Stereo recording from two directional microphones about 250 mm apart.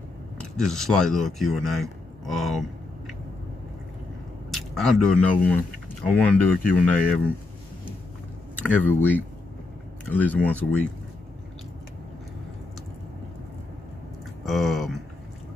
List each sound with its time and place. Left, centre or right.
0.4 s speech: centre
4.5 s speech: centre
8.5 s speech: centre
14.4 s a sound: centre